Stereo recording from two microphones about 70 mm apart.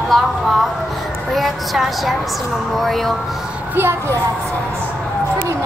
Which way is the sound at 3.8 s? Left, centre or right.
Right.